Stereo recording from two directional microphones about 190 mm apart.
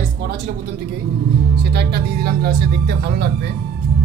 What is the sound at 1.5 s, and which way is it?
Music, 60° right (ahead or behind).